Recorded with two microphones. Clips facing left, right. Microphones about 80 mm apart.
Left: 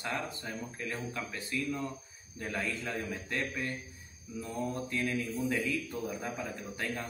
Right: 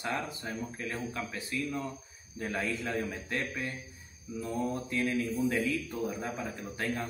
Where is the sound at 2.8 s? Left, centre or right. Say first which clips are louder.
Right 3 dB; centre.